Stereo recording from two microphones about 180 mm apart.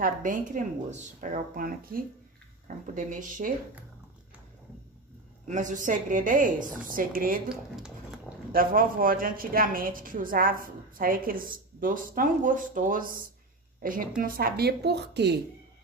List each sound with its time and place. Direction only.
0.0 s a woman's voice: 50° right (ahead or behind)
5.5 s a woman's voice: 45° right (ahead or behind)
7.4 s speech: 5° right (ahead or behind)
8.5 s a woman's voice: 50° right (ahead or behind); by 15.3 s 65° right (ahead or behind)